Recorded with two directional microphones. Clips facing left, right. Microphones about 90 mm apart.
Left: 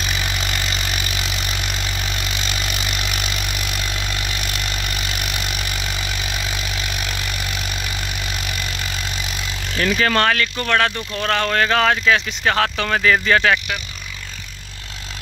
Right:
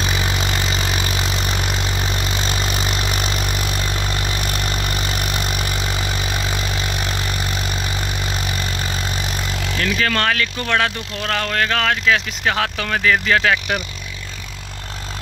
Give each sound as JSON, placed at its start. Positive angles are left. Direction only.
{"t": 0.0, "sound": "vehicle", "side_deg": -30}
{"t": 9.9, "sound": "speech", "side_deg": 15}
{"t": 10.2, "sound": "speech", "side_deg": 0}